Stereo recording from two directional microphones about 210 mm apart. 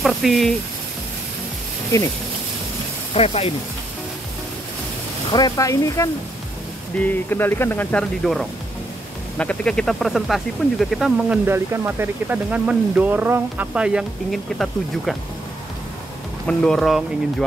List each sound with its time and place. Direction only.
0.0 s speech: centre (ahead or behind)
3.2 s speech: 25° left (ahead or behind)
5.3 s speech: 15° left (ahead or behind); by 15.1 s centre (ahead or behind)
16.4 s speech: centre (ahead or behind)